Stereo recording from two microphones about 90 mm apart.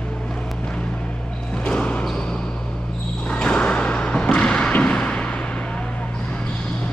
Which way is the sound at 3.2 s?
10° left (ahead or behind).